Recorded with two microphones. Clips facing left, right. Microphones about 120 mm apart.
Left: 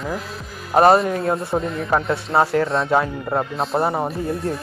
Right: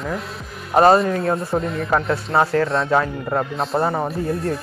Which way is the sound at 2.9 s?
15° left (ahead or behind).